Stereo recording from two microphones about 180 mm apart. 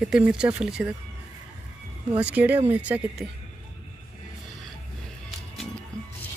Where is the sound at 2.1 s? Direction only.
10° right (ahead or behind).